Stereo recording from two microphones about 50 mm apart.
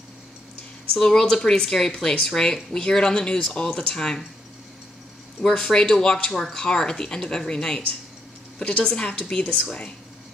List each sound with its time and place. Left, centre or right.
0.9 s speech: centre
5.6 s speech: centre